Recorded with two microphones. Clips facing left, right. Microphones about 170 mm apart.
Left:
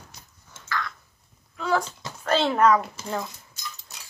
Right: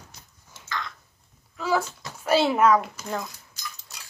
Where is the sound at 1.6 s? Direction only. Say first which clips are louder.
Even; 5° right (ahead or behind).